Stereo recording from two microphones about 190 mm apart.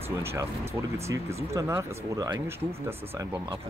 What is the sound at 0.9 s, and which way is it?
Speech, 15° right (ahead or behind).